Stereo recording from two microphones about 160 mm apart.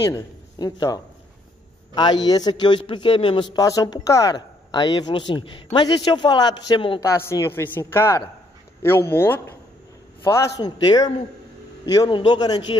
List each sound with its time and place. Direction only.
0.1 s a man's voice: 25° left (ahead or behind)
7.0 s a woman's voice: 20° left (ahead or behind)